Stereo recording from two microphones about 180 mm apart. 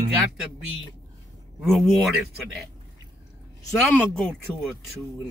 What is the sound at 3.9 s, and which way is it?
Speech, centre (ahead or behind).